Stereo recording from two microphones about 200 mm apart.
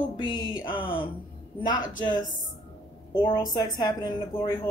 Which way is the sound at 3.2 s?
20° left (ahead or behind).